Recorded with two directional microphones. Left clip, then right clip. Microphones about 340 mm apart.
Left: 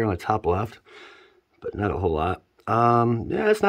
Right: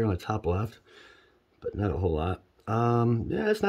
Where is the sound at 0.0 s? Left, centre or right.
Centre.